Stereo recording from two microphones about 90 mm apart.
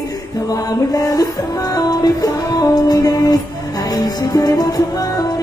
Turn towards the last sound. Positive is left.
turn(degrees=45)  # may be behind; listen again after turning